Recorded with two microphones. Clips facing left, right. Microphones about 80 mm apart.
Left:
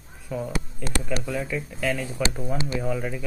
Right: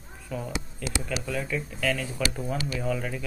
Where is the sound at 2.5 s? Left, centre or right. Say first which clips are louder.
Left 3 dB; left.